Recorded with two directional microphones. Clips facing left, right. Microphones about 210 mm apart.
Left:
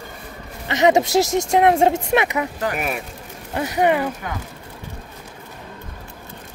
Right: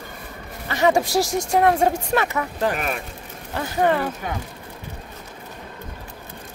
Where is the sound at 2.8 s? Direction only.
5° left (ahead or behind).